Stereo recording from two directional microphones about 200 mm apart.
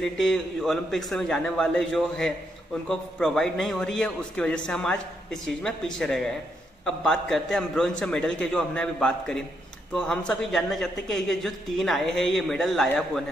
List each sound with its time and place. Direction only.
0.2 s a man's voice: centre (ahead or behind)